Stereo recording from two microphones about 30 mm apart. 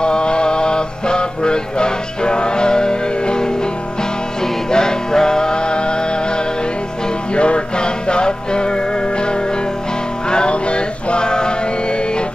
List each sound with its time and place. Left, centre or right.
0.0 s music: left
4.6 s music: left
7.3 s music: left
10.3 s music: left